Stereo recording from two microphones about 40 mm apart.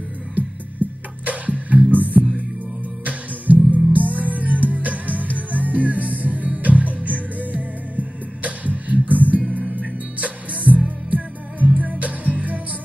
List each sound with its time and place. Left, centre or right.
0.4 s music: right